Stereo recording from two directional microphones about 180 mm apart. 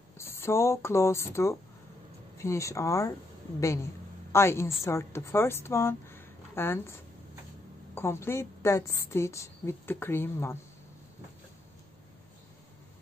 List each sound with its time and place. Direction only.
0.2 s a woman's voice: 15° left (ahead or behind)